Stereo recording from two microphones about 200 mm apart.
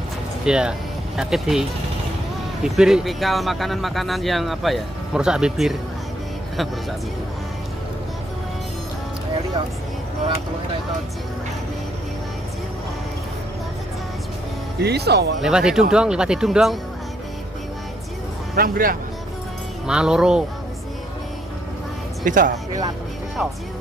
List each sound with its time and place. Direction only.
0.5 s speech: 5° right (ahead or behind)
14.8 s speech: 55° right (ahead or behind)
15.4 s speech: 5° right (ahead or behind)
18.6 s speech: 45° right (ahead or behind)
19.9 s speech: 5° right (ahead or behind)
22.2 s speech: 40° right (ahead or behind)